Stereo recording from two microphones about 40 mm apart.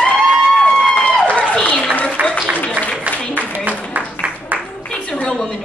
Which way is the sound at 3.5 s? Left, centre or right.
Right.